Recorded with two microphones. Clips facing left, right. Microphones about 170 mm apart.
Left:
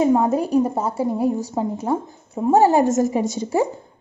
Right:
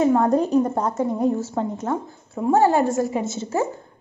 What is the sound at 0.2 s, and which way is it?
A woman's voice, 5° left (ahead or behind).